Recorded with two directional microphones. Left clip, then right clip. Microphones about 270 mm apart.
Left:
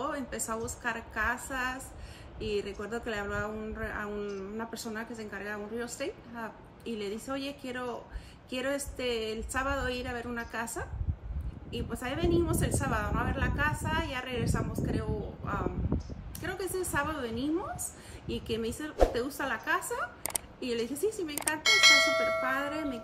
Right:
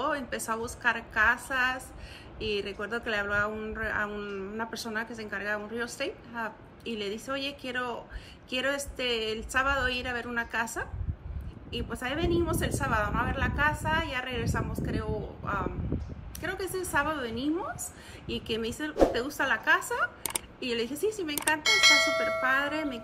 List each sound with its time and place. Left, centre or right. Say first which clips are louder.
0.0 s speech: right 4 dB; centre